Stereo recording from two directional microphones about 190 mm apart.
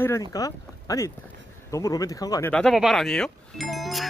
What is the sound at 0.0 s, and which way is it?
Speech, 15° left (ahead or behind).